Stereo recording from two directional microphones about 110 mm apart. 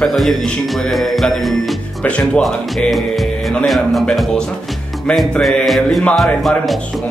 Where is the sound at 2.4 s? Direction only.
Centre (ahead or behind).